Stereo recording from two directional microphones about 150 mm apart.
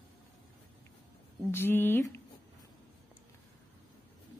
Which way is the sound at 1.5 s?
15° left (ahead or behind).